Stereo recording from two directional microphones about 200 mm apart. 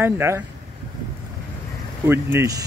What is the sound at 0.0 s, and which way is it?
Speech, 10° right (ahead or behind).